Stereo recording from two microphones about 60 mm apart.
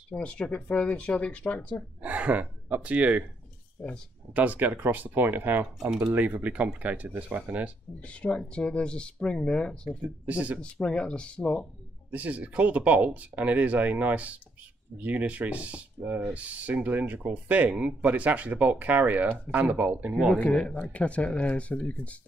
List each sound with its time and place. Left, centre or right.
0.1 s speech: centre
2.0 s speech: right
3.8 s speech: left
4.3 s speech: right
8.0 s speech: left
10.2 s speech: right
10.6 s speech: centre
12.1 s speech: right
20.3 s speech: left